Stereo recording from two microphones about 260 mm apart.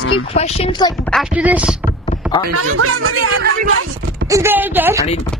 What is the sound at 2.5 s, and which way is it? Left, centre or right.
Speech, right.